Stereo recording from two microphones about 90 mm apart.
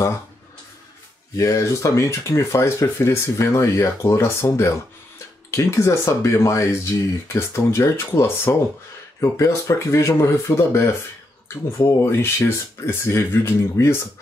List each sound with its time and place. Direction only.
1.3 s speech: 35° left (ahead or behind)